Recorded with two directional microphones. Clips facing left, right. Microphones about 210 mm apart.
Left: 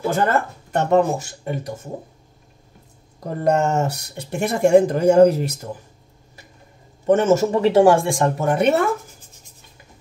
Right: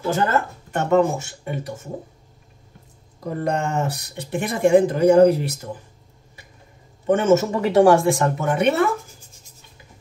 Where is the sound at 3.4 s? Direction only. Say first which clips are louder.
Left 5 dB; 40° left (ahead or behind).